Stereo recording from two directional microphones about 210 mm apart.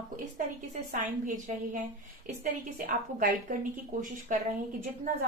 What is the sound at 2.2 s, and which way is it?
A woman's voice, 40° right (ahead or behind).